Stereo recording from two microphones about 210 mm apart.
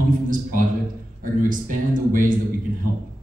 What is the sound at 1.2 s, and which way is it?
A man's voice, 40° right (ahead or behind).